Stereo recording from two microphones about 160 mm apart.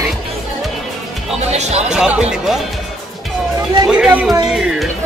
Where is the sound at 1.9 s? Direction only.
5° right (ahead or behind).